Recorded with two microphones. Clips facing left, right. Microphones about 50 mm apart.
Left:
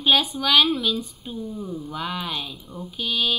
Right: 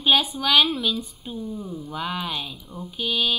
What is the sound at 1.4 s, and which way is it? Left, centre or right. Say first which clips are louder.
Speech: left 1 dB; left.